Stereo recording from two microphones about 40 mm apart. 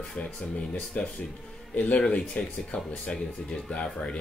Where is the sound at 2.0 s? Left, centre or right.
Left.